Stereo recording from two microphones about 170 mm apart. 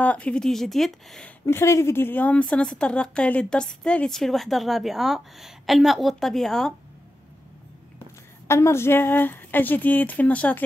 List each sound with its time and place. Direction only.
0.0 s a woman's voice: 10° left (ahead or behind)
1.4 s a woman's voice: 15° left (ahead or behind)
8.5 s speech: 15° left (ahead or behind)